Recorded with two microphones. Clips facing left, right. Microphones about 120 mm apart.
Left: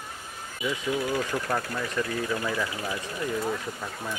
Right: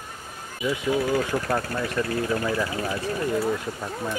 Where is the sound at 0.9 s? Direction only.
45° right (ahead or behind).